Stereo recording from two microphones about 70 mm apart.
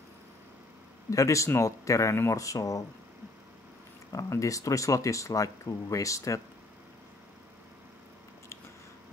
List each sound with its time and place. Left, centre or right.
1.1 s speech: left
4.1 s speech: left